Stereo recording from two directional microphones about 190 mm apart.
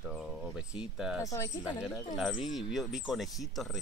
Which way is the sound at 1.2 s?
15° left (ahead or behind).